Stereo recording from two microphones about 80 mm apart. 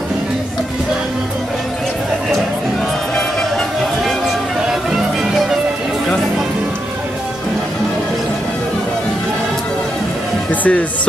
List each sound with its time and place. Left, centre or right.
10.5 s speech: centre